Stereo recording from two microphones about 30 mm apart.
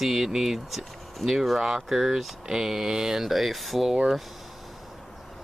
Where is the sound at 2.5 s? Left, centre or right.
Centre.